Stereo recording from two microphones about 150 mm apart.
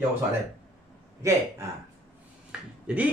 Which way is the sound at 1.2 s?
20° right (ahead or behind).